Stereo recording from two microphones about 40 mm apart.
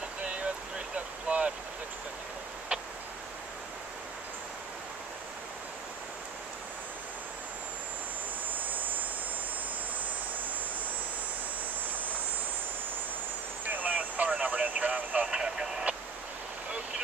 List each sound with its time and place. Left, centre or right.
0.2 s boat: right
13.7 s vehicle: right
15.2 s a sound: centre